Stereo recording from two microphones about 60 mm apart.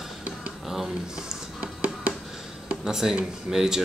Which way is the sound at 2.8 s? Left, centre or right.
Centre.